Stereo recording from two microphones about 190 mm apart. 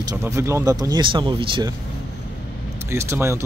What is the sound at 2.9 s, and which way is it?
Speech, 15° right (ahead or behind).